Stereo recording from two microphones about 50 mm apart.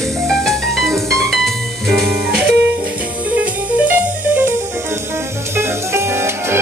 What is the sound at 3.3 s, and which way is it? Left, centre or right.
Music, right.